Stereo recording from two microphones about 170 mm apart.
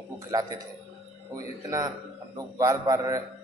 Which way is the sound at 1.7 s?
20° right (ahead or behind).